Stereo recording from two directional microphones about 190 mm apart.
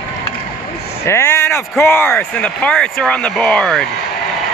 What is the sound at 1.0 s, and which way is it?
Speech, 15° left (ahead or behind).